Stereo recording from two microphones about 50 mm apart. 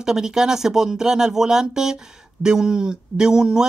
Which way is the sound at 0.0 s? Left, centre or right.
Centre.